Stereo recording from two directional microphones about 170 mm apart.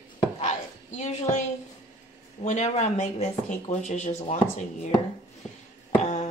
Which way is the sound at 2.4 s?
40° left (ahead or behind).